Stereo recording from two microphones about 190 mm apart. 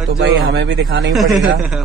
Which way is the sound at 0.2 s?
70° right (ahead or behind).